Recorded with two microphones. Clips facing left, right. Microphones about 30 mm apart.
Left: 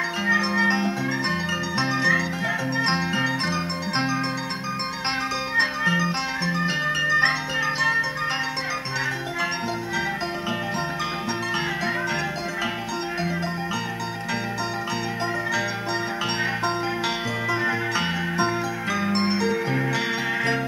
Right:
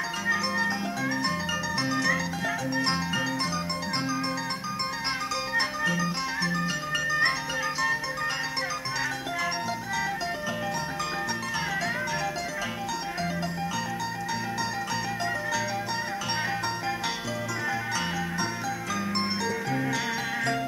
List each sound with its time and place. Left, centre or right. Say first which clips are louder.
0.2 s music: left 6 dB; left
0.6 s music: left 6 dB; left
3.1 s music: left 4 dB; left
5.6 s music: left 7 dB; left
17.5 s music: left 7 dB; left